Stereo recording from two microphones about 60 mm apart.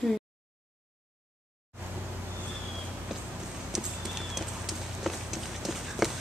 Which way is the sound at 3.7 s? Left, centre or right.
Centre.